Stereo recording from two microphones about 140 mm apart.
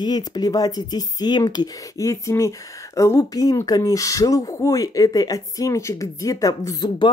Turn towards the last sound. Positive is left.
turn(degrees=30)  # may be behind; listen again after turning